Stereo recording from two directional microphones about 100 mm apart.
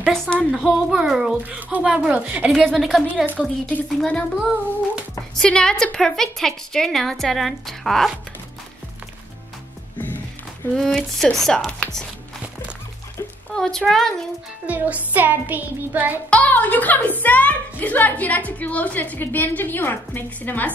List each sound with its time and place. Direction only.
0.1 s a woman's voice: 5° left (ahead or behind); by 2.5 s 15° right (ahead or behind)
2.7 s a woman's voice: centre (ahead or behind)
3.3 s music: 15° right (ahead or behind)
4.0 s a woman's voice: 15° left (ahead or behind)
5.3 s a woman's voice: 5° left (ahead or behind)
9.9 s music: 20° left (ahead or behind)
10.7 s a woman's voice: 5° left (ahead or behind)
13.5 s a woman's voice: 5° left (ahead or behind)
14.7 s music: 15° right (ahead or behind)
16.3 s a woman's voice: 15° left (ahead or behind)